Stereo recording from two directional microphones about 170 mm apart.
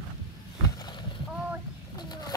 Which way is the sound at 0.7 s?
25° left (ahead or behind).